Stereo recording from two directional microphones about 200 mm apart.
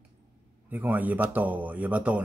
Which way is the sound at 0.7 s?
10° right (ahead or behind).